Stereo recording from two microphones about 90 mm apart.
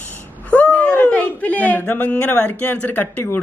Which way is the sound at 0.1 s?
15° left (ahead or behind).